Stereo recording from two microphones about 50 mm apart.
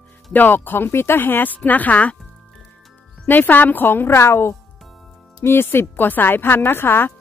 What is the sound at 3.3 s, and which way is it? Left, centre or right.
A woman's voice, left.